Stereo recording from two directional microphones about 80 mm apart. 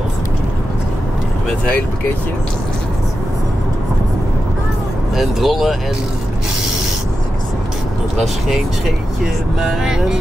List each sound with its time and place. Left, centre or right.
5.1 s speech: centre
8.2 s speech: centre